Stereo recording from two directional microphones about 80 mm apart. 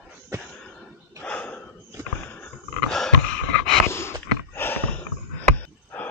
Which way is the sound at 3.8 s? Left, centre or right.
Left.